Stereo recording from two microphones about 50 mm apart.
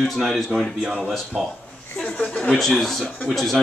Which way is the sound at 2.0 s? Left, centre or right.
Centre.